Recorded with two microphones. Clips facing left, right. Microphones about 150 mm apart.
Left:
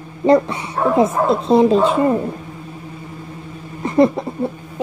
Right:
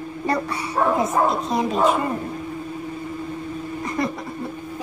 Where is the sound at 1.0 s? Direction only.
30° left (ahead or behind).